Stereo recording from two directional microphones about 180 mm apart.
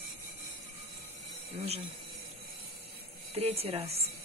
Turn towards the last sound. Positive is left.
turn(degrees=-35)  # may be behind; listen again after turning